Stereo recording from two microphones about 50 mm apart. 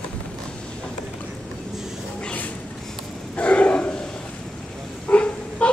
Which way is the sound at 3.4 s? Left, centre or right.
Left.